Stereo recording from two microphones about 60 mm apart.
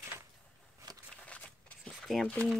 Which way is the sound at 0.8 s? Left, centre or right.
Right.